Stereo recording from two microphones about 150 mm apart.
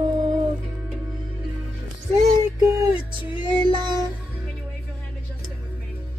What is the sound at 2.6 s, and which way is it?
Music, 20° right (ahead or behind).